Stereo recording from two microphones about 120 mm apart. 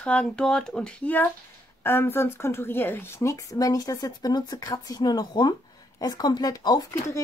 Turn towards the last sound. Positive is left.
turn(degrees=35)  # may be behind; listen again after turning